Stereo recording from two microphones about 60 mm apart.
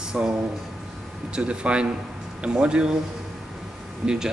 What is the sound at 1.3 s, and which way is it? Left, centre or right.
Speech, centre.